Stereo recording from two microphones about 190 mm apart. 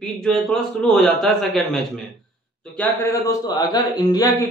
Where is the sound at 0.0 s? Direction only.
5° left (ahead or behind).